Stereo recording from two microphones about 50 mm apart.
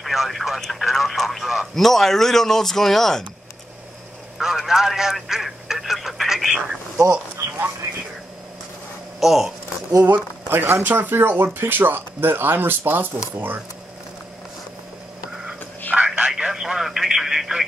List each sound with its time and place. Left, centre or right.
0.0 s speech: centre
4.4 s speech: centre
9.2 s speech: centre
9.8 s speech: right
10.5 s speech: right
15.9 s telephone: right; by 17.6 s centre